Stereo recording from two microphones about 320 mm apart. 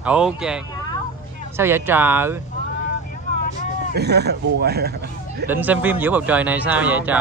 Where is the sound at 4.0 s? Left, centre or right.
Right.